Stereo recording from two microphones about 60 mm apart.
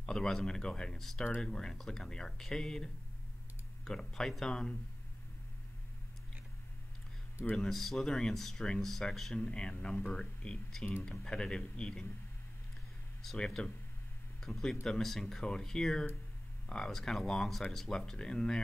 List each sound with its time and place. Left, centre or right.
0.0 s speech: centre
7.5 s speech: centre
13.6 s speech: centre